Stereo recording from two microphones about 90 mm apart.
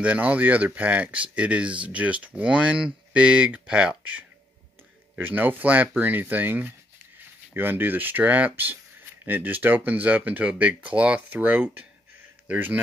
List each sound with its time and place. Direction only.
0.0 s speech: 15° right (ahead or behind)